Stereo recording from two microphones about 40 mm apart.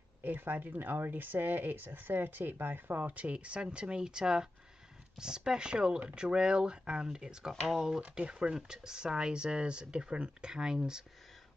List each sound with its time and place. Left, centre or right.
0.2 s speech: right; by 11.1 s centre